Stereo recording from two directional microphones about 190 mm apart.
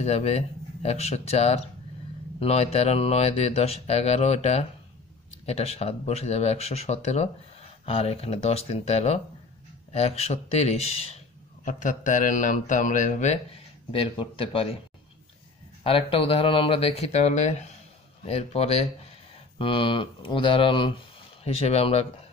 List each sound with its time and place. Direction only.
0.0 s speech: 35° left (ahead or behind)
13.9 s speech: 30° left (ahead or behind)
15.8 s speech: 30° left (ahead or behind)